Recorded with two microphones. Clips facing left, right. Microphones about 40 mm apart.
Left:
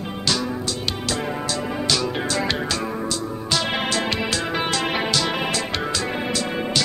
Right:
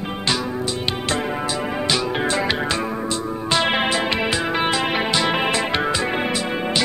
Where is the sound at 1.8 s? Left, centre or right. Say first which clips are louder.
Right 2 dB; right.